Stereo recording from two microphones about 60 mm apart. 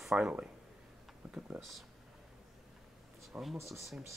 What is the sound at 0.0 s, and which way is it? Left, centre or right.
Speech, centre.